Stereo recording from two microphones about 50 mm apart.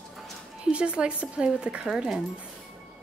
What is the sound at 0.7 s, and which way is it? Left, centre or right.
Speech, right.